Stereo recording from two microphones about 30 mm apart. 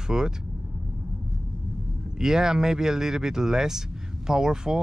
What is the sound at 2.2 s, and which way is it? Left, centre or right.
Speech, centre.